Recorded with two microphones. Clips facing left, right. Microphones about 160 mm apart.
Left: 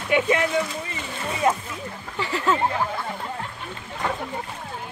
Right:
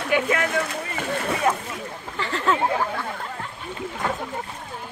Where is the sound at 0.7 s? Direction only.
70° right (ahead or behind).